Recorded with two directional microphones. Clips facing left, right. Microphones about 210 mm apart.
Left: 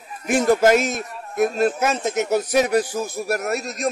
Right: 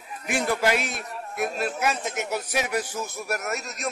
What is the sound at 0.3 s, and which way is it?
A man's voice, 45° left (ahead or behind).